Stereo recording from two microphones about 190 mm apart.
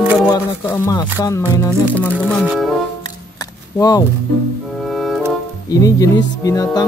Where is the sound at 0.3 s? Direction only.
15° left (ahead or behind).